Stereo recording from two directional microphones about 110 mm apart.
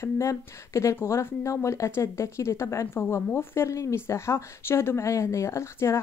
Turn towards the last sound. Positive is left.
turn(degrees=25)  # may be behind; listen again after turning